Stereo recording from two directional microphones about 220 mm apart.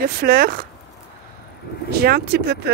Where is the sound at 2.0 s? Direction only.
45° right (ahead or behind).